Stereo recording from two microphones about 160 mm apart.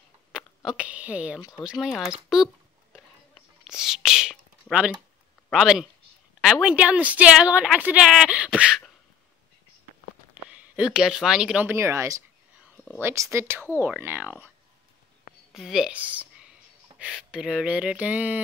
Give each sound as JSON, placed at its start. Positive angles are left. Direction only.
{"t": 0.3, "sound": "a sound", "side_deg": -5}
{"t": 0.7, "sound": "a woman's voice", "side_deg": -10}
{"t": 3.6, "sound": "whispering", "side_deg": -5}
{"t": 5.5, "sound": "a woman's voice", "side_deg": -5}
{"t": 10.5, "sound": "a woman's voice", "side_deg": -5}
{"t": 15.5, "sound": "a woman's voice", "side_deg": 0}